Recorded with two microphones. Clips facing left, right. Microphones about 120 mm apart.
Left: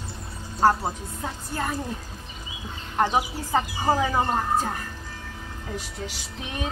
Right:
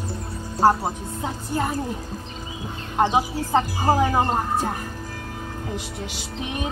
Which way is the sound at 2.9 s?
20° right (ahead or behind).